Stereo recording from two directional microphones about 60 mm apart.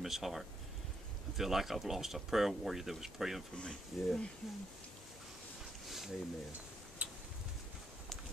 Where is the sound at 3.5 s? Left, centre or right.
Centre.